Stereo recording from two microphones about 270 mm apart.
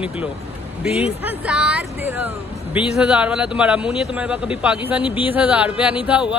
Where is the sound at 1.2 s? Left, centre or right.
Centre.